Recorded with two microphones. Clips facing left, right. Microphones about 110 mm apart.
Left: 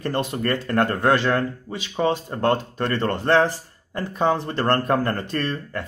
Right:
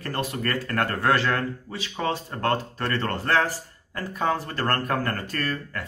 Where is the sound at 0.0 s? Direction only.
25° left (ahead or behind).